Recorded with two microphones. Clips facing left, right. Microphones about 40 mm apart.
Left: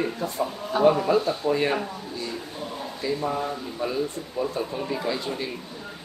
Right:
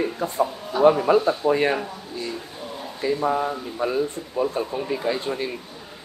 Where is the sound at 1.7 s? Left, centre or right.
Centre.